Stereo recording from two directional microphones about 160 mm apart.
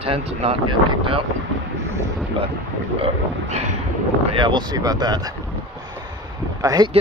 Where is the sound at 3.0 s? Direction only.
45° right (ahead or behind).